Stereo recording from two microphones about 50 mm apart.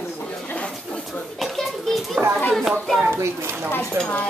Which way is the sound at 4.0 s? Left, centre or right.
Right.